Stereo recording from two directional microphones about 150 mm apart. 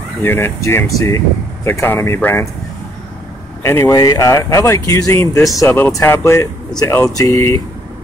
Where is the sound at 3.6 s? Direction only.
15° left (ahead or behind).